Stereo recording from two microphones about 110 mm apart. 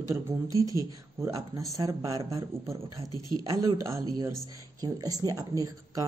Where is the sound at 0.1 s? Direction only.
30° right (ahead or behind).